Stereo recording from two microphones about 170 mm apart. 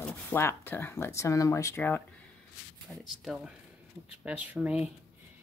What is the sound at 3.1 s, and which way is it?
Speech, centre (ahead or behind).